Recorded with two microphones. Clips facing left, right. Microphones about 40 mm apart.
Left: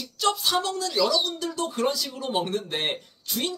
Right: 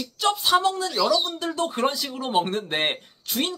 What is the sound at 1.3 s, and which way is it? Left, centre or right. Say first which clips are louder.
Speech: right 3 dB; right.